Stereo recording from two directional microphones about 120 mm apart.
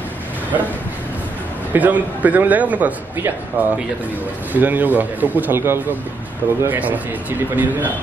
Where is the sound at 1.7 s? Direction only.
15° right (ahead or behind).